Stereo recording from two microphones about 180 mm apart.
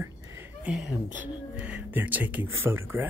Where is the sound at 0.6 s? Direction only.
5° right (ahead or behind).